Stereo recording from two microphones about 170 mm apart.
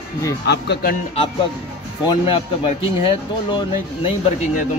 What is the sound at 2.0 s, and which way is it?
A man's voice, 30° left (ahead or behind).